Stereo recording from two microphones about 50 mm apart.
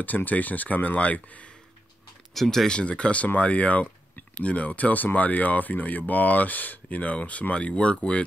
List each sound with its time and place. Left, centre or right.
0.0 s speech: left
2.3 s speech: centre
2.8 s speech: left